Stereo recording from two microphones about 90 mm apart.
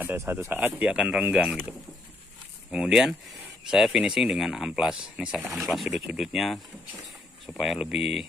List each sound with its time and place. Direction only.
0.0 s speech: 25° right (ahead or behind)
2.7 s speech: 10° right (ahead or behind)